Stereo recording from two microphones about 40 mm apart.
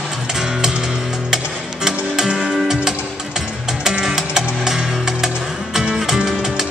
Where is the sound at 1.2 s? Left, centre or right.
Centre.